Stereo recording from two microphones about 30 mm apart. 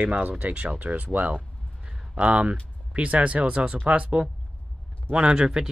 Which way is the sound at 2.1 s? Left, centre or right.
Right.